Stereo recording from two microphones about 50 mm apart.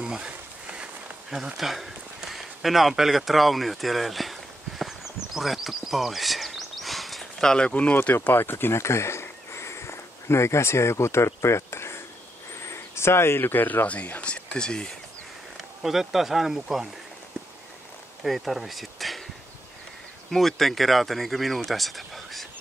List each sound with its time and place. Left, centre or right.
0.0 s a sound: centre
1.3 s speech: centre
5.3 s a sound: centre; by 8.3 s left
8.3 s speech: left
12.5 s a sound: left
13.8 s speech: left
15.8 s speech: centre
18.2 s speech: centre
20.2 s speech: centre